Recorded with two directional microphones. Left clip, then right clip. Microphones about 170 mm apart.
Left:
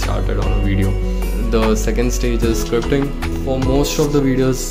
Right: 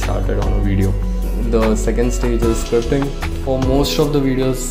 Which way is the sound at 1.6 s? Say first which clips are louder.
Even; 10° left (ahead or behind).